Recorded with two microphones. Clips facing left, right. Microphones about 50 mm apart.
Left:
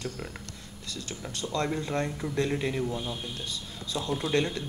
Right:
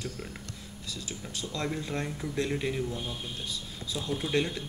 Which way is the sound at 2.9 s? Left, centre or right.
Left.